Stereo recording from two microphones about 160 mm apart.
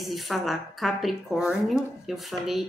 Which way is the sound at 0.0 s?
Centre (ahead or behind).